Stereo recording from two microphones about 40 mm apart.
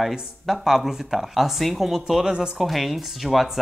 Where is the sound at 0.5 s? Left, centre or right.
Centre.